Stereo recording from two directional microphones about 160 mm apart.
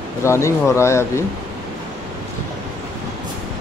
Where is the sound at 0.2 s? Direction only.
15° left (ahead or behind).